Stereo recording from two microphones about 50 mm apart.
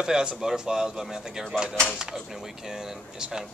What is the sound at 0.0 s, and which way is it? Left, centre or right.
Speech, centre.